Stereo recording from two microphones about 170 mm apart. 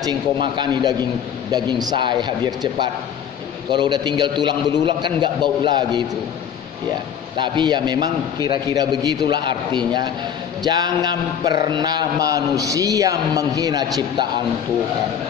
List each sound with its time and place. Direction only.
0.0 s a man's voice: 25° right (ahead or behind)
7.3 s a man's voice: 25° right (ahead or behind)